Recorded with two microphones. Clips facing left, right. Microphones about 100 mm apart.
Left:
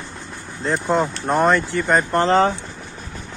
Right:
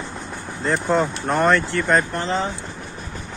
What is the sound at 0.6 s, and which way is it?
Speech, centre (ahead or behind).